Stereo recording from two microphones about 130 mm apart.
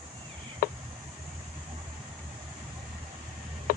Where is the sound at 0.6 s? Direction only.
90° left.